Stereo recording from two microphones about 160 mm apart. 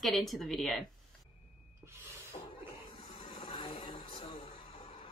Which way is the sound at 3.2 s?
35° left (ahead or behind).